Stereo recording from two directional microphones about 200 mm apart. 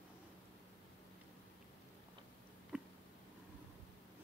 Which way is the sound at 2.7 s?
5° right (ahead or behind).